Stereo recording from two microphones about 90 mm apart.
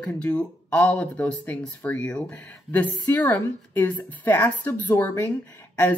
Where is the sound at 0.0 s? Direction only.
10° left (ahead or behind).